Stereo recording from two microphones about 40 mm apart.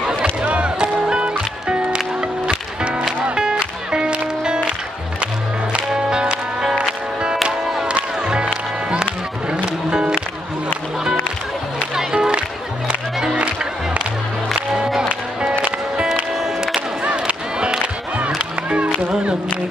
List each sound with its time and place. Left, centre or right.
0.5 s music: right
5.7 s music: right
11.9 s music: centre
12.3 s music: right
17.0 s music: right